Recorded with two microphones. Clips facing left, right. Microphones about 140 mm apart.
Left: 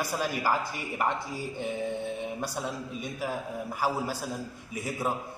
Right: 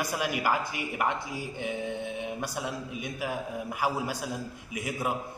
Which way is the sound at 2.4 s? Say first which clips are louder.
Even; 10° right (ahead or behind).